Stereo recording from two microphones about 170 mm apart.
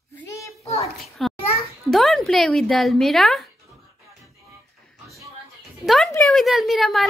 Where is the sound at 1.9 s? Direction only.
Centre (ahead or behind).